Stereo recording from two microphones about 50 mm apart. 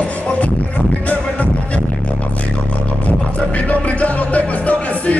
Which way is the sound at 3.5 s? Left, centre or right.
Left.